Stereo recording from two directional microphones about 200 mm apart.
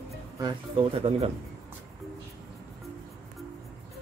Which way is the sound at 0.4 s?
25° right (ahead or behind).